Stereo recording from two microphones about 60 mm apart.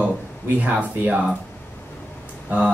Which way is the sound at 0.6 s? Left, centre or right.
Right.